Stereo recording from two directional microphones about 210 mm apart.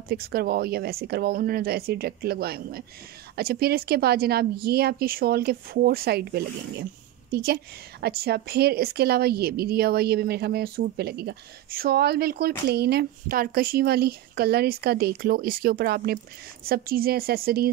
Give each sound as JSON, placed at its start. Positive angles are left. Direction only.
{"t": 0.1, "sound": "a woman's voice", "side_deg": -45}